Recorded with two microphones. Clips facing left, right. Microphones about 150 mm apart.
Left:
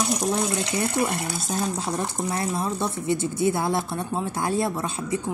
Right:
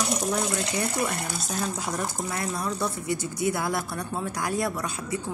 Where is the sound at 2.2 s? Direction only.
25° left (ahead or behind).